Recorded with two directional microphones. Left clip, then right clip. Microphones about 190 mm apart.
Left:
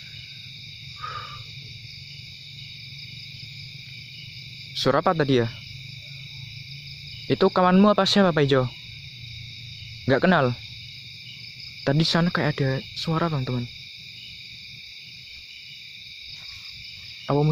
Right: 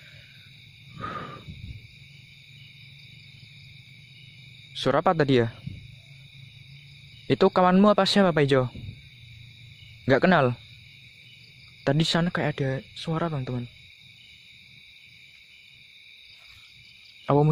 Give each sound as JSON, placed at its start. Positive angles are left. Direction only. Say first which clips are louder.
{"t": 4.7, "sound": "speech", "louder": "left 1 dB", "side_deg": -10}
{"t": 7.2, "sound": "speech", "louder": "even", "side_deg": -15}
{"t": 10.0, "sound": "speech", "louder": "even", "side_deg": -15}
{"t": 11.8, "sound": "speech", "louder": "left 2 dB", "side_deg": -15}
{"t": 17.3, "sound": "cricket", "louder": "right 2 dB", "side_deg": -20}